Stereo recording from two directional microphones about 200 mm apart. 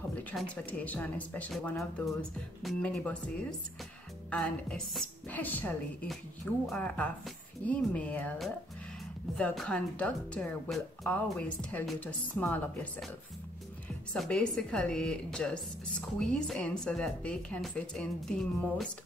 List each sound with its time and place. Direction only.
0.3 s a woman's voice: 5° left (ahead or behind)
14.1 s speech: 5° left (ahead or behind)